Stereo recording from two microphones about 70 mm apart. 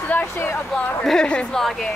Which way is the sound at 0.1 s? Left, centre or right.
Left.